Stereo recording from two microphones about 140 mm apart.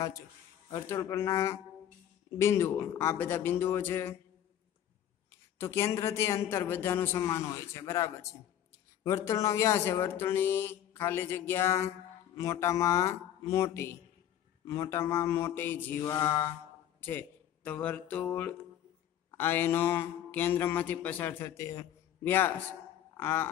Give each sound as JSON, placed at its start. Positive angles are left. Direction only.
{"t": 0.7, "sound": "a man's voice", "side_deg": 20}
{"t": 5.6, "sound": "a man's voice", "side_deg": 20}